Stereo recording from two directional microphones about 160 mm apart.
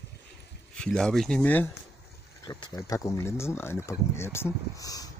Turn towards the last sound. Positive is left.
turn(degrees=20)  # may be behind; listen again after turning